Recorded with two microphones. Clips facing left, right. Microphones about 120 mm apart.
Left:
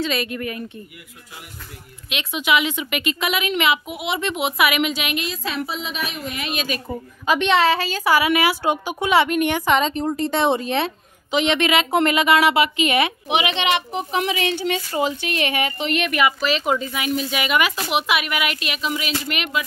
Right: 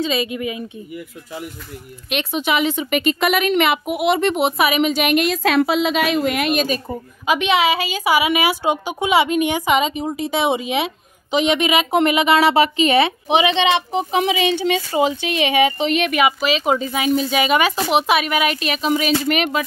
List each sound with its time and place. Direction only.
0.0 s a woman's voice: 20° right (ahead or behind)
2.0 s a woman's voice: 50° right (ahead or behind)
2.4 s a woman's voice: 40° right (ahead or behind)
5.1 s a woman's voice: 65° right (ahead or behind)
6.9 s a woman's voice: 10° right (ahead or behind); by 19.6 s 45° right (ahead or behind)